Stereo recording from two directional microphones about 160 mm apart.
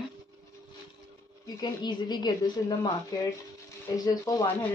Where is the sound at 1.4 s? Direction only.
25° left (ahead or behind).